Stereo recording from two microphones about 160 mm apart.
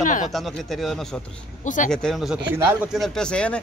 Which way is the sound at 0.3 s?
Centre (ahead or behind).